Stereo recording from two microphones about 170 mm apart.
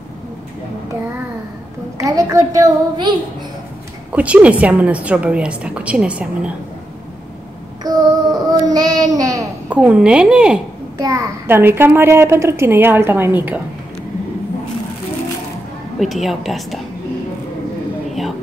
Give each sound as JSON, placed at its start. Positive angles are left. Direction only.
{"t": 2.0, "sound": "a child's voice", "side_deg": -20}
{"t": 4.1, "sound": "a child's voice", "side_deg": -5}
{"t": 7.8, "sound": "child singing", "side_deg": -20}
{"t": 9.7, "sound": "a woman's voice", "side_deg": -5}
{"t": 11.0, "sound": "a child's voice", "side_deg": -20}
{"t": 16.0, "sound": "a woman's voice", "side_deg": 0}